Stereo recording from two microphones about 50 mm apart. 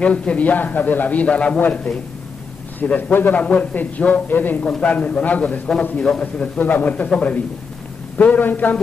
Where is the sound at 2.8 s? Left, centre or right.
Left.